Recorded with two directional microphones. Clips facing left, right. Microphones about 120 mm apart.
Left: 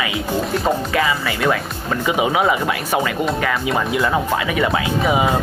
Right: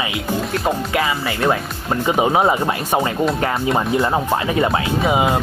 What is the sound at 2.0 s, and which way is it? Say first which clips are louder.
Speech: right 2 dB; 35° right (ahead or behind).